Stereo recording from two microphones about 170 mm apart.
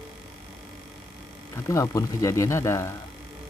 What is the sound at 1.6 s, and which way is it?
Speech, 20° left (ahead or behind).